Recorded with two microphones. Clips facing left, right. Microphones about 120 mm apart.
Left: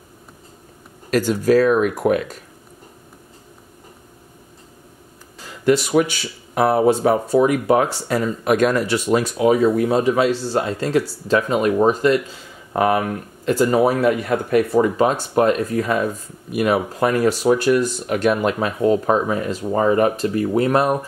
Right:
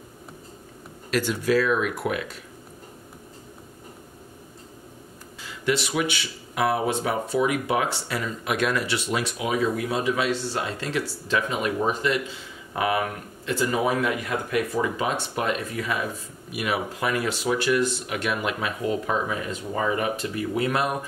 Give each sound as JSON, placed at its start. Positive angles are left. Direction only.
{"t": 1.1, "sound": "speech", "side_deg": 45}
{"t": 5.4, "sound": "speech", "side_deg": 40}